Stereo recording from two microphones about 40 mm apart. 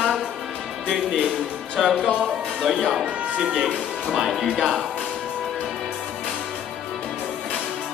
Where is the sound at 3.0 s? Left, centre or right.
Right.